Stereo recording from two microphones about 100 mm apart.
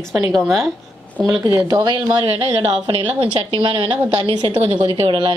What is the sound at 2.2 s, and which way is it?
A woman's voice, 80° right.